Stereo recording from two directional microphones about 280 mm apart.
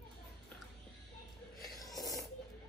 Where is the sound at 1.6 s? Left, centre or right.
Centre.